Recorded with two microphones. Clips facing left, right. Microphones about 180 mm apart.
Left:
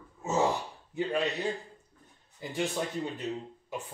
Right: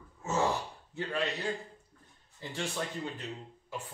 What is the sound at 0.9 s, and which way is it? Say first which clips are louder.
A man's voice: left 4 dB; 15° left (ahead or behind).